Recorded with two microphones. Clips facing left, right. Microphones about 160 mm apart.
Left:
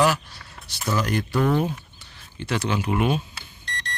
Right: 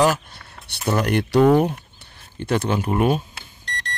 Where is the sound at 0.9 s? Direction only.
65° right (ahead or behind).